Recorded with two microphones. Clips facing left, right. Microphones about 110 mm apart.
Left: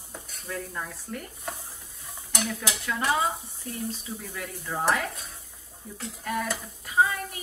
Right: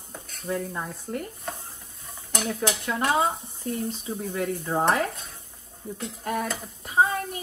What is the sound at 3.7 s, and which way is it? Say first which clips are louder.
Speech: right 7 dB; 40° right (ahead or behind).